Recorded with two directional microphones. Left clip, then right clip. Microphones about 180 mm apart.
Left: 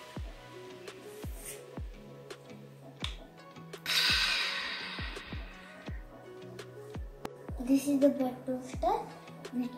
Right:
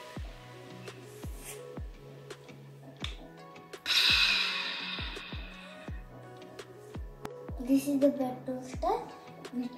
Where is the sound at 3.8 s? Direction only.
10° right (ahead or behind).